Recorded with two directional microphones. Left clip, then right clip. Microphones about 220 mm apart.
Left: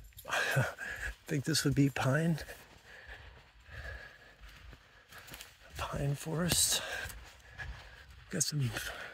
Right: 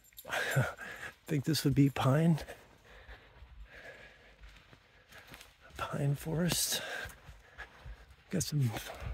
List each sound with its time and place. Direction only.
0.2 s speech: 15° right (ahead or behind); by 2.5 s 35° right (ahead or behind)
5.8 s speech: 30° right (ahead or behind)
6.6 s a sound: 25° right (ahead or behind)
8.3 s speech: 35° right (ahead or behind)